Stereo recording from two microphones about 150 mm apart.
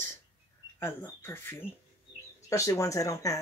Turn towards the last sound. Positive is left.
turn(degrees=20)  # may be behind; listen again after turning